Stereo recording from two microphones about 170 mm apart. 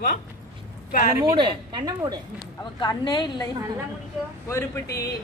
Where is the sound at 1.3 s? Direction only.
25° right (ahead or behind).